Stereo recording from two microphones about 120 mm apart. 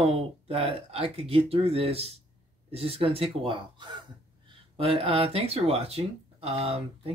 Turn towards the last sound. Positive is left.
turn(degrees=-55)  # may be behind; listen again after turning